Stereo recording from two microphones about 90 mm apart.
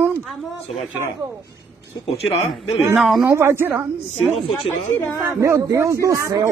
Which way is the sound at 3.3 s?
30° right (ahead or behind).